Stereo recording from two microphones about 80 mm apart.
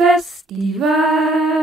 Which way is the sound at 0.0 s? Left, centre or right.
Centre.